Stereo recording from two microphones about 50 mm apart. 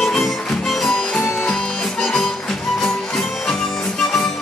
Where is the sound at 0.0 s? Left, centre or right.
Centre.